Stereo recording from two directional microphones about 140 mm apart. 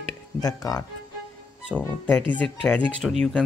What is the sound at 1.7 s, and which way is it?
Speech, 10° left (ahead or behind).